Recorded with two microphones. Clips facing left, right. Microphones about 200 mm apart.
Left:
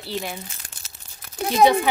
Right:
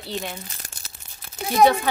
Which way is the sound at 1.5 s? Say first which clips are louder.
Left 1 dB; 15° left (ahead or behind).